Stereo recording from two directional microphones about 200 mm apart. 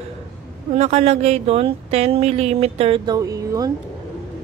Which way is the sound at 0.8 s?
30° right (ahead or behind).